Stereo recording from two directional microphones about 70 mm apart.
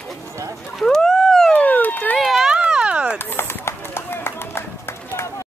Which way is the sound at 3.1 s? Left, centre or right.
Left.